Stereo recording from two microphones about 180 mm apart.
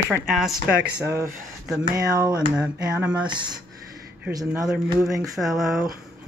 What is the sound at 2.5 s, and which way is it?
Speech, 5° right (ahead or behind).